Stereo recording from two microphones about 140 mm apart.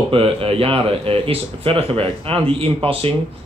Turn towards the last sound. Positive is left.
turn(degrees=-40)  # may be behind; listen again after turning